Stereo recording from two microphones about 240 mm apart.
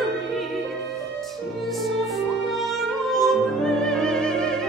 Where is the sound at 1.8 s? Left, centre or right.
Centre.